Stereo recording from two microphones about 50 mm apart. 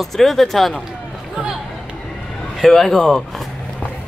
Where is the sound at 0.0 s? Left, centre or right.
Centre.